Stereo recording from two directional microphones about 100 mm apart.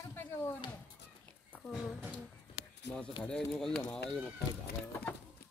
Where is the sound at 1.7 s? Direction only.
5° left (ahead or behind).